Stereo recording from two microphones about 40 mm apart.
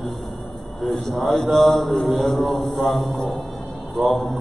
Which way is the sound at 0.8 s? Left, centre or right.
Centre.